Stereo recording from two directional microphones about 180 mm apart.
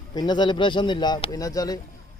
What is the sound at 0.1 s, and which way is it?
Speech, 25° left (ahead or behind).